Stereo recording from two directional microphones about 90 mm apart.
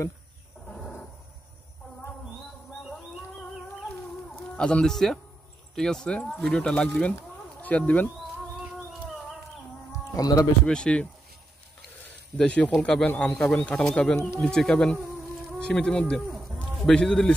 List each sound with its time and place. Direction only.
0.7 s a sound: 5° left (ahead or behind)
4.6 s speech: 10° left (ahead or behind)
10.1 s speech: 45° left (ahead or behind)
10.7 s speech: 10° left (ahead or behind)
12.4 s speech: 10° left (ahead or behind)
16.3 s a sound: centre (ahead or behind)